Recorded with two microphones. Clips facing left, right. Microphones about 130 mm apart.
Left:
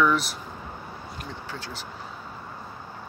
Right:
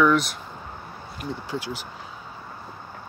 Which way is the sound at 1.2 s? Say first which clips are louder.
Right 9 dB; 10° right (ahead or behind).